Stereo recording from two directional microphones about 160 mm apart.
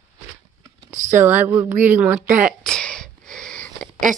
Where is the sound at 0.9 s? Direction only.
50° right (ahead or behind).